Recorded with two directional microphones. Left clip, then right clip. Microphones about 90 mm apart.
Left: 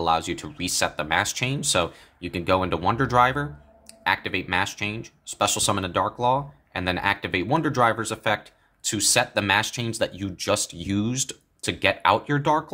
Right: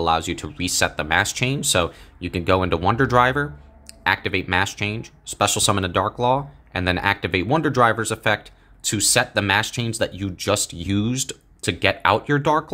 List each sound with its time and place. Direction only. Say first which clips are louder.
0.0 s speech: right 2 dB; 20° right (ahead or behind)